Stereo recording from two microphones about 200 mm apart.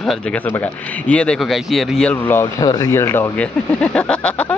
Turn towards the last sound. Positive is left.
turn(degrees=5)  # may be behind; listen again after turning